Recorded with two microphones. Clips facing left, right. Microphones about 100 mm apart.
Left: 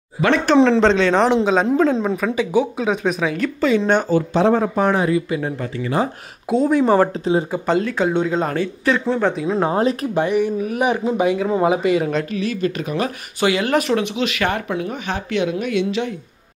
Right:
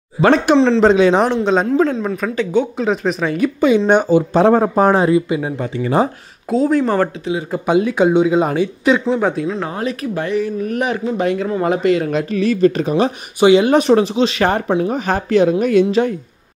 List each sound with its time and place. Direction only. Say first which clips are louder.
0.7 s speech: right 3 dB; 10° right (ahead or behind)
1.3 s a woman's voice: right 1 dB; 5° left (ahead or behind)
3.3 s speech: right 4 dB; 15° right (ahead or behind)
4.3 s speech: right 4 dB; 50° right (ahead or behind); by 5.2 s 30° right (ahead or behind)
5.3 s speech: right 3 dB; 15° right (ahead or behind)
6.5 s a woman's voice: even; centre (ahead or behind)
7.6 s speech: right 4 dB; 15° right (ahead or behind)
9.1 s a woman's voice: right 2 dB; 5° right (ahead or behind)
9.6 s speech: left 4 dB; 30° left (ahead or behind)
10.2 s a man's voice: even; 15° left (ahead or behind)
12.3 s speech: right 8 dB; 40° right (ahead or behind)